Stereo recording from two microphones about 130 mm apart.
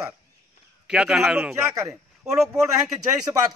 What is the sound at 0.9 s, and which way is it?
Speech, 5° right (ahead or behind).